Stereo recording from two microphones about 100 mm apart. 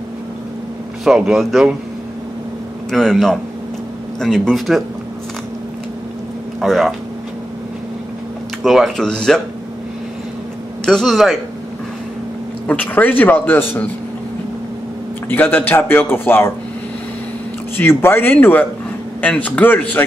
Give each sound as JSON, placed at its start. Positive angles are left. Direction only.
{"t": 1.0, "sound": "speech", "side_deg": -5}
{"t": 2.9, "sound": "speech", "side_deg": 5}
{"t": 6.6, "sound": "speech", "side_deg": 0}
{"t": 8.6, "sound": "speech", "side_deg": 0}
{"t": 10.9, "sound": "speech", "side_deg": 5}
{"t": 12.6, "sound": "a man's voice", "side_deg": 15}
{"t": 15.2, "sound": "a man's voice", "side_deg": 20}
{"t": 17.7, "sound": "a man's voice", "side_deg": 25}